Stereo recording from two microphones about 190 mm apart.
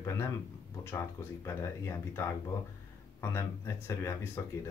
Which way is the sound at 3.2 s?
15° left (ahead or behind).